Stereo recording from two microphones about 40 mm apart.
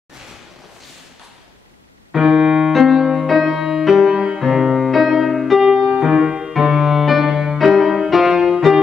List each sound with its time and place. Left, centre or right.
2.1 s music: centre
4.1 s music: right; by 8.4 s centre
8.4 s music: centre